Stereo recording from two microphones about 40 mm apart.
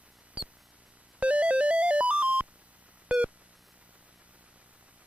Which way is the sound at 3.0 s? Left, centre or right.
Right.